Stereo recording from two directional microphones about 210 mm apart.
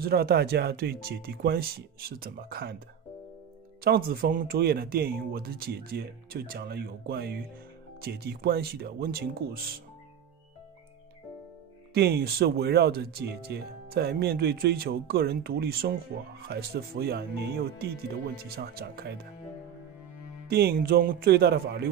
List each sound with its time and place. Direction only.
0.0 s speech: 45° right (ahead or behind)
3.8 s speech: 45° right (ahead or behind)
11.9 s speech: 50° right (ahead or behind)
20.4 s speech: 50° right (ahead or behind)